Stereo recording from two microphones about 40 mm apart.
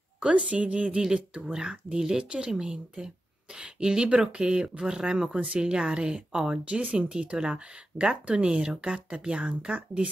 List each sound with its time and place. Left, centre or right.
0.2 s a woman's voice: right
6.7 s a woman's voice: right